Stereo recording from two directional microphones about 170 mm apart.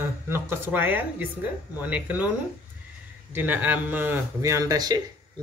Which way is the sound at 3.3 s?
10° right (ahead or behind).